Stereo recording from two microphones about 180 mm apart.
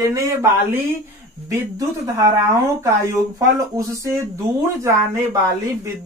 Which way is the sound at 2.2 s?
15° right (ahead or behind).